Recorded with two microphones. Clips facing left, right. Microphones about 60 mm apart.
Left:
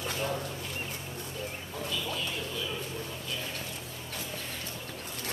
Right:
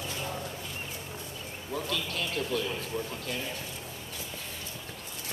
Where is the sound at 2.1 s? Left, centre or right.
Right.